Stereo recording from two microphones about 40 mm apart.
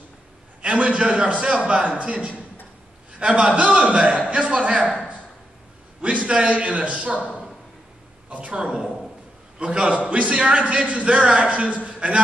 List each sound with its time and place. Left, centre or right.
0.6 s a sound: right
1.0 s a man's voice: right
3.5 s a man's voice: right
5.9 s a man's voice: right
8.3 s a sound: right
9.6 s a man's voice: right